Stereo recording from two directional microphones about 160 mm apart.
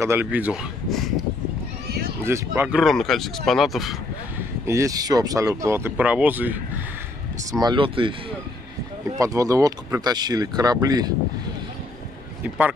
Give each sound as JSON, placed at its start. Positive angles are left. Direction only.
{"t": 0.0, "sound": "speech", "side_deg": -15}
{"t": 1.9, "sound": "run", "side_deg": -75}
{"t": 2.2, "sound": "speech", "side_deg": -15}
{"t": 2.8, "sound": "speech", "side_deg": 0}
{"t": 4.6, "sound": "speech", "side_deg": -20}
{"t": 7.6, "sound": "speech", "side_deg": -30}
{"t": 9.2, "sound": "speech", "side_deg": -20}